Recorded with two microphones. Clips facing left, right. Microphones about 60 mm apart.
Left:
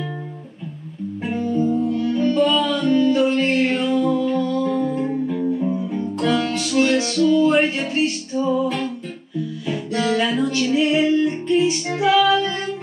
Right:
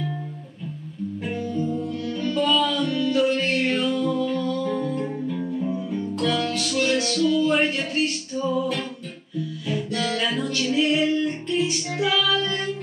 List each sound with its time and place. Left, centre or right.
1.2 s music: centre
5.2 s music: centre
9.7 s music: centre